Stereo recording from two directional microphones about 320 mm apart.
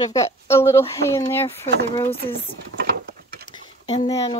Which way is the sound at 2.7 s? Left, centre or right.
Right.